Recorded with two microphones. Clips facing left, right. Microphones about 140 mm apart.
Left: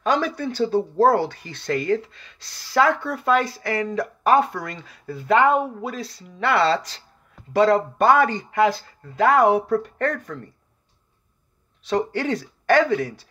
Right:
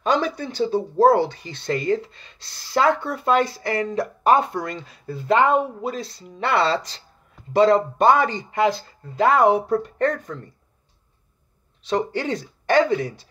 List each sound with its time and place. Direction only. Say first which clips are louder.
0.0 s speech: even; 20° right (ahead or behind)
11.8 s speech: even; 20° right (ahead or behind)